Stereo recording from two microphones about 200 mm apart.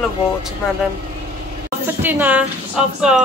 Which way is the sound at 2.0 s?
10° right (ahead or behind).